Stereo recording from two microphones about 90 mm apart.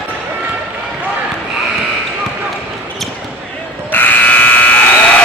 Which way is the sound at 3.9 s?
20° left (ahead or behind).